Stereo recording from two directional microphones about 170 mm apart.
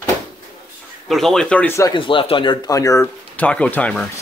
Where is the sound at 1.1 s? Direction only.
Centre (ahead or behind).